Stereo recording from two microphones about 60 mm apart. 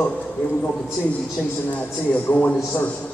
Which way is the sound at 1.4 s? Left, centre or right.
Left.